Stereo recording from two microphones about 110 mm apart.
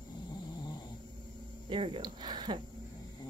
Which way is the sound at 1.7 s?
50° right (ahead or behind).